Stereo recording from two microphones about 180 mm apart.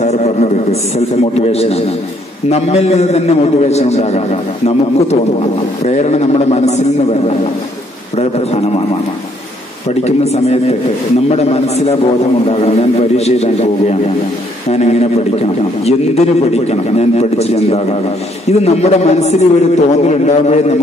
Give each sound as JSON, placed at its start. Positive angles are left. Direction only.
{"t": 0.0, "sound": "a man's voice", "side_deg": 40}
{"t": 10.0, "sound": "a man's voice", "side_deg": 35}